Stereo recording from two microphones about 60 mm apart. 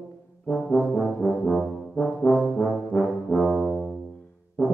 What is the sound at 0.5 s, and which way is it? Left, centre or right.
Brass instrument, centre.